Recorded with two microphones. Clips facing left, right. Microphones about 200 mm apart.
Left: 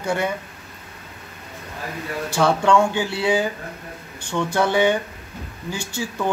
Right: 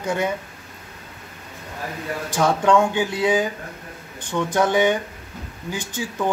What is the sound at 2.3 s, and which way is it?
Speech, 15° right (ahead or behind).